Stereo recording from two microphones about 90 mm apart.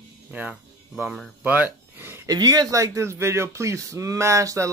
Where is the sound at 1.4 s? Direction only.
20° right (ahead or behind).